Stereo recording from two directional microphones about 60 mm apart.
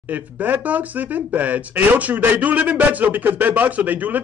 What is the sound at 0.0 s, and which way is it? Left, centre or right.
Speech, right.